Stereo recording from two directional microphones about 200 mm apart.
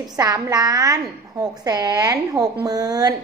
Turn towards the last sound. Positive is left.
turn(degrees=-20)  # may be behind; listen again after turning